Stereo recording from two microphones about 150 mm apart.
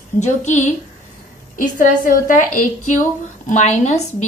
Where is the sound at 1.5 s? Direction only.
65° left (ahead or behind).